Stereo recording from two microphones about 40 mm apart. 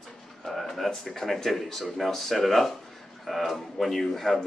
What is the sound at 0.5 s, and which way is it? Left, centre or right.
Speech, centre.